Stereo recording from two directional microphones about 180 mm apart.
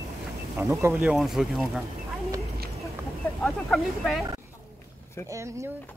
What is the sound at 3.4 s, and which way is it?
Speech, centre (ahead or behind).